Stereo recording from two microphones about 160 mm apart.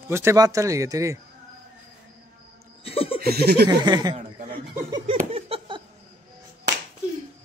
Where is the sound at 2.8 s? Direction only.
35° left (ahead or behind).